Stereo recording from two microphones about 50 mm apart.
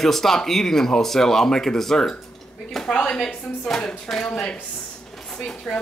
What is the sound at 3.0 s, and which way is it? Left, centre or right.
A man's voice, centre.